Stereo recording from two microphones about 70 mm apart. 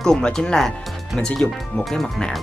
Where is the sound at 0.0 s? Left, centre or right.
Centre.